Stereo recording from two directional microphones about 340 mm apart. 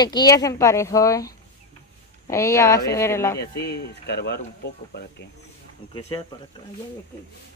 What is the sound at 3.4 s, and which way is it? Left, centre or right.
Speech, left.